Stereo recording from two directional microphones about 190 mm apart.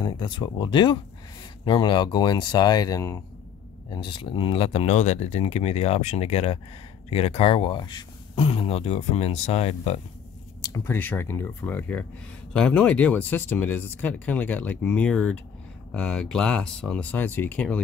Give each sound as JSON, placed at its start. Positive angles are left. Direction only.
{"t": 0.0, "sound": "speech", "side_deg": 25}
{"t": 10.6, "sound": "speech", "side_deg": 15}